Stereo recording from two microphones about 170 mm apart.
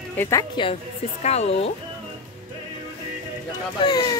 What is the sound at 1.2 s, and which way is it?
Speech, 40° left (ahead or behind).